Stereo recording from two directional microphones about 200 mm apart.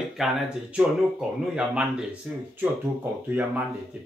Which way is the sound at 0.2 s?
5° right (ahead or behind).